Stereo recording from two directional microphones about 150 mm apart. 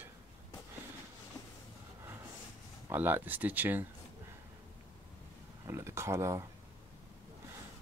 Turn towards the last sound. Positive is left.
turn(degrees=-20)  # may be behind; listen again after turning